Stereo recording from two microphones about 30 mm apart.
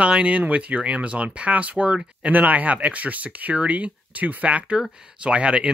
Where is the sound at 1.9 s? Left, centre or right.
Right.